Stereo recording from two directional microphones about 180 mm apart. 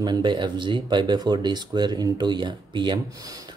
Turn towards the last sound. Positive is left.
turn(degrees=-25)  # may be behind; listen again after turning